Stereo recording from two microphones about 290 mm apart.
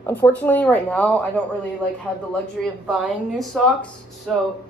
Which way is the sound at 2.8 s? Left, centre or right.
Centre.